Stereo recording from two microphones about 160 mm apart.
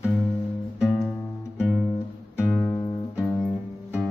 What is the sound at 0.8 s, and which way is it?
Music, centre (ahead or behind).